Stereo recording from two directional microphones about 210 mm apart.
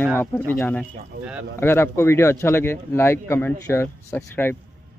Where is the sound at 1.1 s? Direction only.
45° right (ahead or behind).